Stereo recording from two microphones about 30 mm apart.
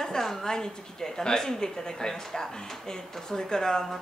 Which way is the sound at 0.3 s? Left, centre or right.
Centre.